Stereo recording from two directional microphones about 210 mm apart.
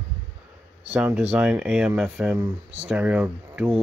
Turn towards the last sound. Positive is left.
turn(degrees=-5)  # may be behind; listen again after turning